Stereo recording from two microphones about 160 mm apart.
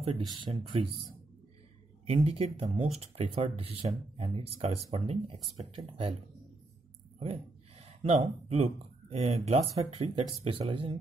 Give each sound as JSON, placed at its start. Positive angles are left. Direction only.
{"t": 0.5, "sound": "speech", "side_deg": -35}
{"t": 2.0, "sound": "speech", "side_deg": -40}
{"t": 7.2, "sound": "speech", "side_deg": -40}